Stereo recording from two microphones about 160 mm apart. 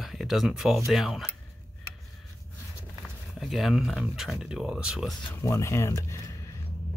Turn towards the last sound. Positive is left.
turn(degrees=20)  # may be behind; listen again after turning